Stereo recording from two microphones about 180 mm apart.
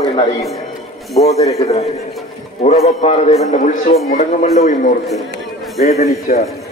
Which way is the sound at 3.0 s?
40° left (ahead or behind).